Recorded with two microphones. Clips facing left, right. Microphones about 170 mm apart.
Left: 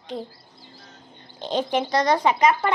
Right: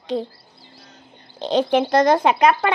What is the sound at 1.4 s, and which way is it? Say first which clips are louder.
Speech: right 6 dB; 80° right.